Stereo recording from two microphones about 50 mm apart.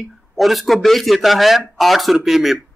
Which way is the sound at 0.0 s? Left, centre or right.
Centre.